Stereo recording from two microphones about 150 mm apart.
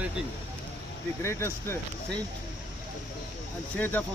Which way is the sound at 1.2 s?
15° left (ahead or behind).